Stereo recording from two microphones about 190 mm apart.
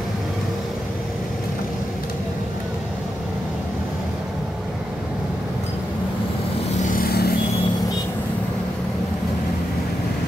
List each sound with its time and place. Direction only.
6.9 s vehicle: 50° left (ahead or behind)